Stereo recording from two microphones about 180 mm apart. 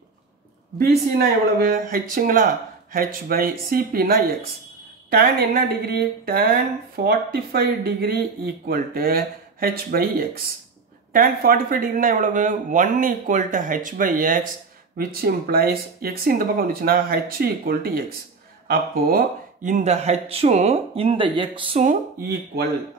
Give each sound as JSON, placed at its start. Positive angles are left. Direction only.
{"t": 0.7, "sound": "speech", "side_deg": -60}
{"t": 21.8, "sound": "speech", "side_deg": -50}